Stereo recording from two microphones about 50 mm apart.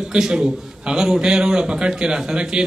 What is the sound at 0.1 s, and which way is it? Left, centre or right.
A man's voice, centre.